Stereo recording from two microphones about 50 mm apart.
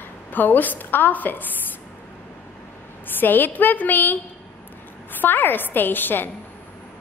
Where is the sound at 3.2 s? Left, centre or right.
Left.